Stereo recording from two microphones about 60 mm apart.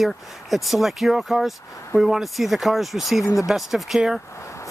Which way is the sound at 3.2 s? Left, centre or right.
Left.